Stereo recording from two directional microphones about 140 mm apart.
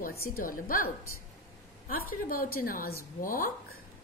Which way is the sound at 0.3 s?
85° left.